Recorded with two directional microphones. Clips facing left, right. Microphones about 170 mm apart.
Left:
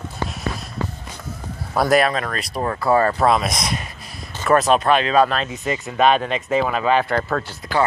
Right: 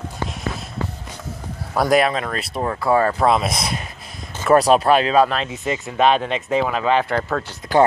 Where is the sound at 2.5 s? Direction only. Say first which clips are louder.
Even; 5° right (ahead or behind).